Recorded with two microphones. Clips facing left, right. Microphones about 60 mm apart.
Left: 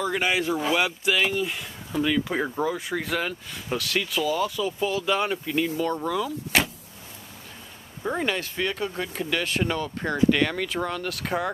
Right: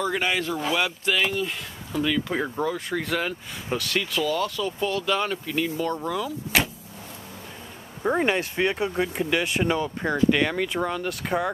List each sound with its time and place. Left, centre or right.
0.0 s speech: centre
8.0 s speech: centre